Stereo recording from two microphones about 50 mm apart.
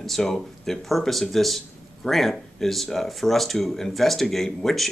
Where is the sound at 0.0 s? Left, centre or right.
Centre.